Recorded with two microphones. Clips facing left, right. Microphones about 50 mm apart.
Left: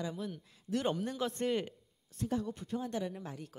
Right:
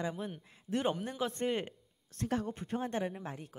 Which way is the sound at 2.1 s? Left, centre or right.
Right.